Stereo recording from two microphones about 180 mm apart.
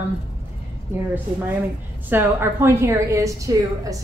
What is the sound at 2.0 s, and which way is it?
A woman's voice, 10° right (ahead or behind).